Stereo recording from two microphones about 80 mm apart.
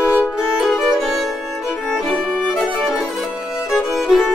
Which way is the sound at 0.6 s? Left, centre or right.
Centre.